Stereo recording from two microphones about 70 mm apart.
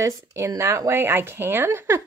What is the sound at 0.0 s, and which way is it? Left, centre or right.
Speech, right.